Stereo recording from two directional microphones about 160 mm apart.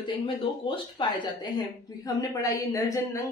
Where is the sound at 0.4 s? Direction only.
30° left (ahead or behind).